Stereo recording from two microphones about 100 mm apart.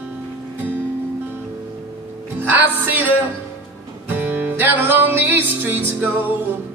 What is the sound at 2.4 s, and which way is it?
Music, 20° right (ahead or behind).